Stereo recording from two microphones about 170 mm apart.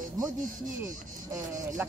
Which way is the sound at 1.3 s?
50° right (ahead or behind).